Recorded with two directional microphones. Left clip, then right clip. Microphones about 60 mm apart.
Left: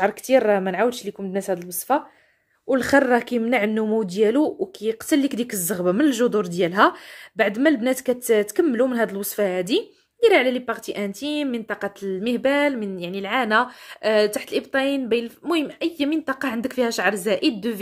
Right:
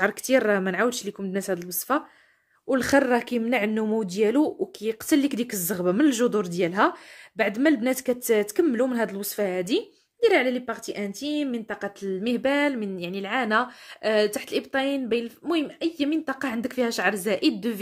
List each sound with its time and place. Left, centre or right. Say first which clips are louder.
0.0 s a woman's voice: left 4 dB; centre
2.9 s speech: left 4 dB; left
3.8 s a woman's voice: left 4 dB; left
6.5 s speech: left 3 dB; left
6.8 s speech: left 7 dB; left
7.7 s speech: left 3 dB; centre; by 11.9 s left
12.0 s speech: left 2 dB; centre; by 16.2 s left
16.3 s a woman's voice: left 4 dB; left; by 17.7 s centre